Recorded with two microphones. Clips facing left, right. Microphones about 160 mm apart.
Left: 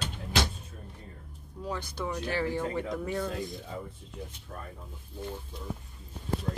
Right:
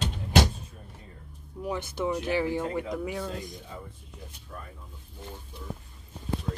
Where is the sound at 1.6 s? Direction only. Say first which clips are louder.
Right 4 dB; 20° right (ahead or behind).